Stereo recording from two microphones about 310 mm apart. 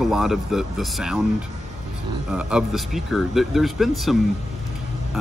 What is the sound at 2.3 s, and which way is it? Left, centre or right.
Speech, centre.